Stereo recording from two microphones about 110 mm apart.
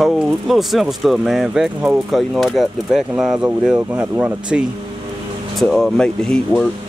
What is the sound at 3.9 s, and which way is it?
Speech, 20° right (ahead or behind).